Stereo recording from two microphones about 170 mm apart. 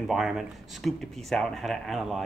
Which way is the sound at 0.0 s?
Centre (ahead or behind).